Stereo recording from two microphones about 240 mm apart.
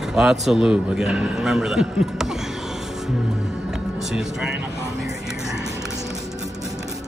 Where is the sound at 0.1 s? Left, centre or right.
Centre.